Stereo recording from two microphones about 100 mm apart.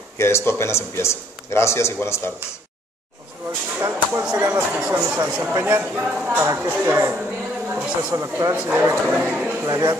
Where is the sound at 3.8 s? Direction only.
25° right (ahead or behind).